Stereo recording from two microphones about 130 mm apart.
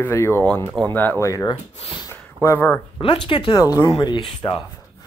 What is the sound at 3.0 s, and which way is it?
Speech, 45° left (ahead or behind).